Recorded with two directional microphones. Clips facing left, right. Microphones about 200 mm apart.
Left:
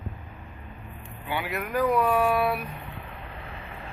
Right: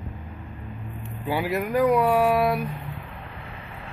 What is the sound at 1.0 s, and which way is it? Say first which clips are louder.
Vehicle: right 5 dB; 35° right (ahead or behind).